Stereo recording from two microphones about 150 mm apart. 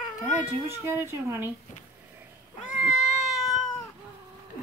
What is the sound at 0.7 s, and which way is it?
Speech, 15° right (ahead or behind).